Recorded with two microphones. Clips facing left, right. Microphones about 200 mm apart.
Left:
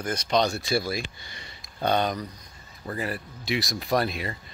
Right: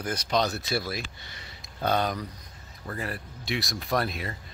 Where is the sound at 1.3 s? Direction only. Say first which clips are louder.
Left 1 dB; 5° right (ahead or behind).